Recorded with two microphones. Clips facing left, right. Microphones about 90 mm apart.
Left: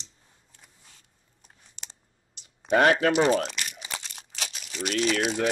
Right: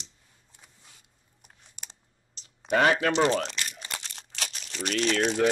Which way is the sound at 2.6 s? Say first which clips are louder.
Left 2 dB; 10° left (ahead or behind).